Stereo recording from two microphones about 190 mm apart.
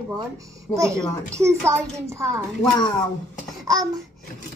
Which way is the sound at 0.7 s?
10° left (ahead or behind).